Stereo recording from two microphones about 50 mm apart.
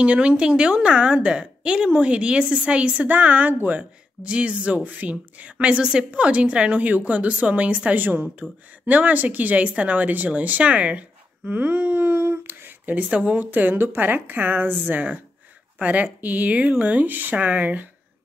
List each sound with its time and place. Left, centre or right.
0.0 s a woman's voice: right
3.2 s a woman's voice: right
7.9 s speech: right